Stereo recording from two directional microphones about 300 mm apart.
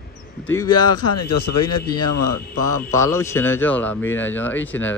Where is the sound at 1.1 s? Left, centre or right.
Left.